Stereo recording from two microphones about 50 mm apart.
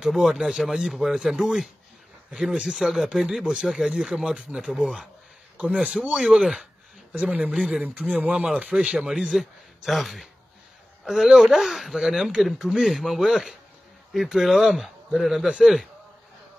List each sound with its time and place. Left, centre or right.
0.0 s speech: centre
2.6 s speech: centre
5.6 s speech: right
6.1 s speech: centre
9.0 s a man's voice: centre